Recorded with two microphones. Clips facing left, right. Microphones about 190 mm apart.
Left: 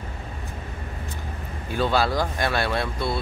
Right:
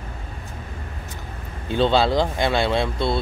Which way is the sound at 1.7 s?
25° right (ahead or behind).